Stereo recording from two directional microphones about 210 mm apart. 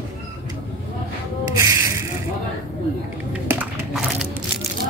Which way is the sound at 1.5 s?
15° right (ahead or behind).